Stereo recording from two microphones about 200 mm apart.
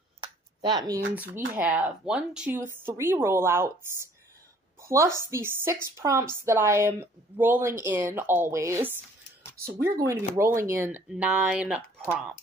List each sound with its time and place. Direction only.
0.2 s a sound: 20° right (ahead or behind)
1.1 s speech: 10° right (ahead or behind)
4.8 s a woman's voice: 15° right (ahead or behind)